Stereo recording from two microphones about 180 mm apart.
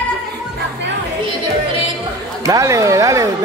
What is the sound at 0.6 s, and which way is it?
Music, 75° right (ahead or behind).